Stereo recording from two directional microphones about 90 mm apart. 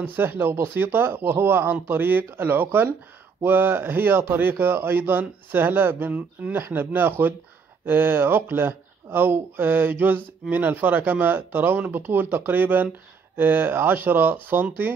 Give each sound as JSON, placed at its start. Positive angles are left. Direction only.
{"t": 0.0, "sound": "speech", "side_deg": -20}